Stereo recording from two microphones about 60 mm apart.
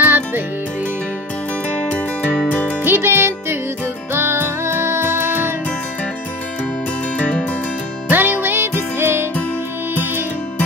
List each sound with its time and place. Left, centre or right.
0.0 s music: right
1.9 s music: left
2.8 s music: right
7.2 s music: left
8.1 s music: right